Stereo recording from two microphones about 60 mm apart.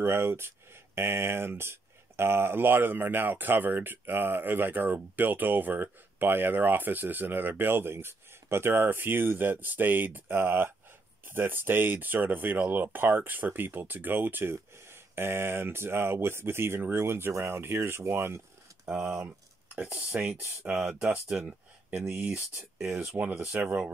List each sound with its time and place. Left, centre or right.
0.0 s speech: right
18.9 s speech: centre
19.2 s speech: right
21.9 s speech: right
22.8 s speech: centre
23.1 s speech: right